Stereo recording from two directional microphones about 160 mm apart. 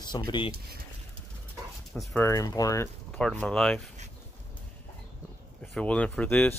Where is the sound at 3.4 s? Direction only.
5° left (ahead or behind).